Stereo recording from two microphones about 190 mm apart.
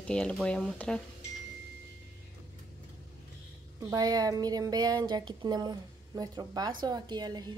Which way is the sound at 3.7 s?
20° right (ahead or behind).